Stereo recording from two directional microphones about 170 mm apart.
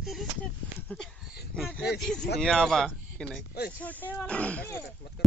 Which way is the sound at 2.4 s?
5° left (ahead or behind).